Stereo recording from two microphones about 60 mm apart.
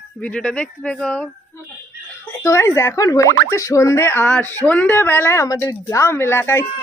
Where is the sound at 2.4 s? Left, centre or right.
Left.